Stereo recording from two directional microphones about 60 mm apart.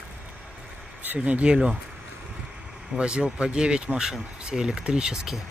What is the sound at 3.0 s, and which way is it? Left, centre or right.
Speech, centre.